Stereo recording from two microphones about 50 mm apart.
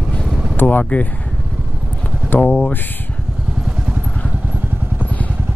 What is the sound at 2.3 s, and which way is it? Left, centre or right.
Speech, left.